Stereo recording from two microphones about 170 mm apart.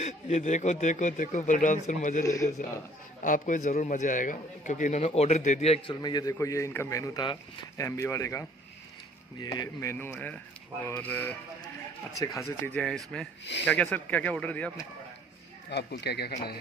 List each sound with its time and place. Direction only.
0.0 s speech: 40° left (ahead or behind)
2.2 s a man's voice: 20° left (ahead or behind)
3.2 s a man's voice: 50° left (ahead or behind); by 11.3 s 10° left (ahead or behind)
12.4 s speech: 10° left (ahead or behind)
15.7 s speech: 75° left (ahead or behind)